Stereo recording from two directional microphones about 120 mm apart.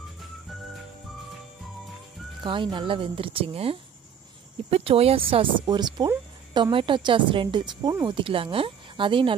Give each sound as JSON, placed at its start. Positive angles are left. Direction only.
{"t": 2.4, "sound": "speech", "side_deg": -40}